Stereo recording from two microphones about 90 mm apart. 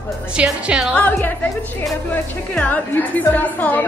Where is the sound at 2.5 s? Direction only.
20° left (ahead or behind).